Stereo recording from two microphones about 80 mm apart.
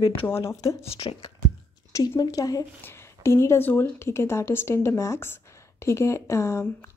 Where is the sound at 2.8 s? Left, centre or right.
Left.